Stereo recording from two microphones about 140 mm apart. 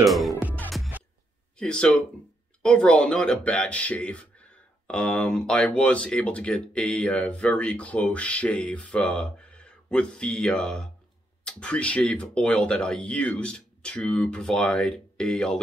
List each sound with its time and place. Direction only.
0.0 s speech: centre (ahead or behind)
1.6 s speech: 5° left (ahead or behind)